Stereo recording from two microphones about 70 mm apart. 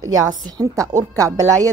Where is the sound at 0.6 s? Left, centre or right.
Right.